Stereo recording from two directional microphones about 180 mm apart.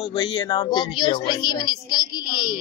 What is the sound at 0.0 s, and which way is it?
Speech, 25° left (ahead or behind).